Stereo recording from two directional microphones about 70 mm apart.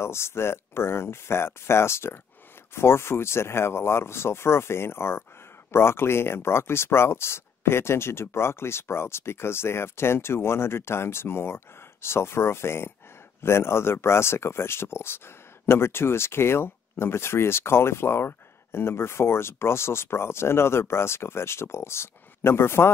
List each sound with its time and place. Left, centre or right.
0.0 s speech: left